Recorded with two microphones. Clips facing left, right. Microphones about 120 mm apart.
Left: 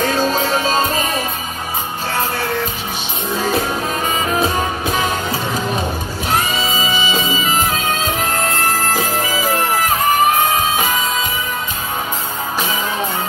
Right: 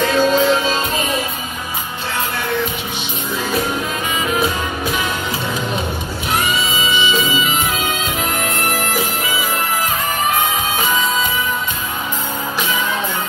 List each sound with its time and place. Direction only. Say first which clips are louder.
0.0 s music: right 3 dB; 40° left (ahead or behind)
4.1 s music: left 1 dB; 35° left (ahead or behind)
6.3 s music: left 1 dB; 35° left (ahead or behind)